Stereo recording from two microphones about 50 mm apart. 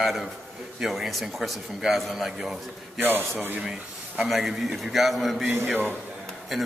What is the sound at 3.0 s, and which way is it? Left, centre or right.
Speech, right.